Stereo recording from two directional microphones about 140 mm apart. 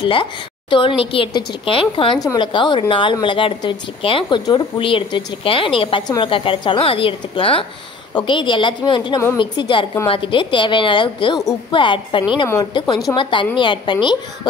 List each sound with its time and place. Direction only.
0.0 s a woman's voice: 35° left (ahead or behind)